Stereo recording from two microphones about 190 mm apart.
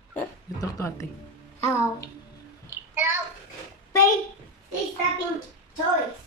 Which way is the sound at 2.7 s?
15° right (ahead or behind).